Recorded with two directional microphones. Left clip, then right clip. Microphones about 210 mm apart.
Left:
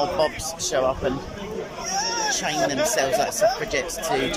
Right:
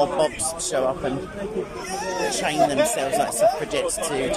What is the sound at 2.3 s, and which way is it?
Speech, 10° right (ahead or behind).